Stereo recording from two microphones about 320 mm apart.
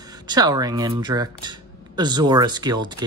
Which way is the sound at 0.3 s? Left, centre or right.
Centre.